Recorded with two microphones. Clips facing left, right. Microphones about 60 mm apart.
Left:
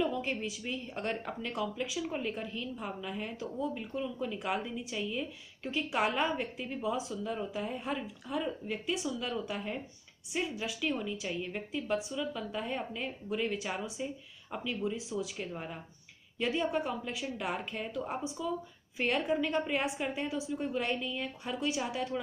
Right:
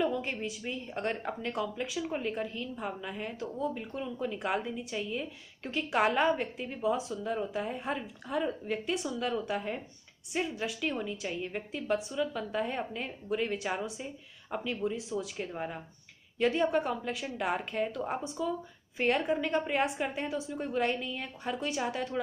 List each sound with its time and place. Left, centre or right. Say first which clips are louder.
0.0 s a woman's voice: right 1 dB; right
5.7 s a woman's voice: right 3 dB; right
6.8 s a woman's voice: right 4 dB; right
8.3 s a woman's voice: right 3 dB; right
15.0 s a woman's voice: right 1 dB; right
15.3 s speech: right 3 dB; right
16.3 s a woman's voice: right 4 dB; right
18.4 s a woman's voice: right 3 dB; right
18.9 s a woman's voice: right 2 dB; right
20.5 s a woman's voice: right 4 dB; right